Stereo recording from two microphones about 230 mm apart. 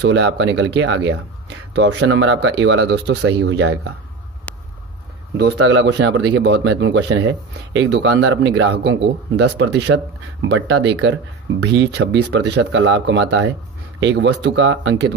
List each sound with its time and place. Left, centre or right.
0.0 s speech: right
4.5 s a sound: centre
5.4 s speech: right